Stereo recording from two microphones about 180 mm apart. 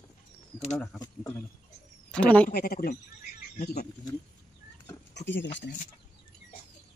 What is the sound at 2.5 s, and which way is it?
Speech, 60° left (ahead or behind).